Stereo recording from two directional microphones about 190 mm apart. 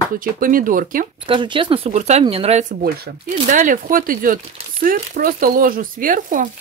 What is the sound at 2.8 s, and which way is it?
Speech, 45° right (ahead or behind).